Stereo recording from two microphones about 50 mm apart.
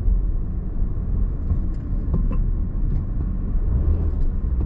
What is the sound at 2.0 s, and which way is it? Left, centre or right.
Vehicle, centre.